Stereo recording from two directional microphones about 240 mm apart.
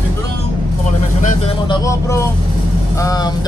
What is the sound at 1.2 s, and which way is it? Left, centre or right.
Speech, left.